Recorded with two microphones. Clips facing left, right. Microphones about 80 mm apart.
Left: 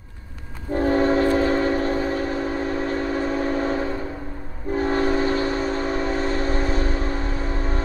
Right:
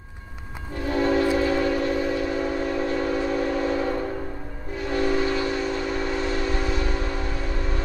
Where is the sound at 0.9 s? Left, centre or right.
Left.